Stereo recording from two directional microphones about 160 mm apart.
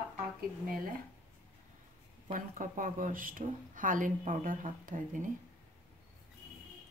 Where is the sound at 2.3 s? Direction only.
55° right (ahead or behind).